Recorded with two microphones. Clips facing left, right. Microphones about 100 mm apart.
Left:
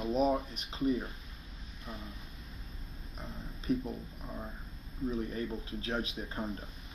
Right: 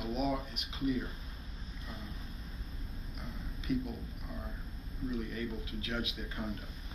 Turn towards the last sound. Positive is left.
turn(degrees=30)  # may be behind; listen again after turning